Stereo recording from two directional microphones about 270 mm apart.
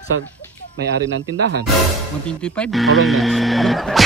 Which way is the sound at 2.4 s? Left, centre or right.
Centre.